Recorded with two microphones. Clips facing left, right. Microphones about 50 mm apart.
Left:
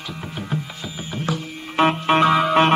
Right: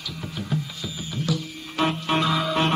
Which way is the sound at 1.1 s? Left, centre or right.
Left.